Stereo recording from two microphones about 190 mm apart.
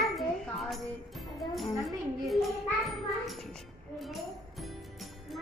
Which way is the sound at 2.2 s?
Centre (ahead or behind).